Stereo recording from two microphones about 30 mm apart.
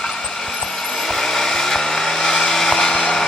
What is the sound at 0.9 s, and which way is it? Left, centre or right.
Vehicle, centre.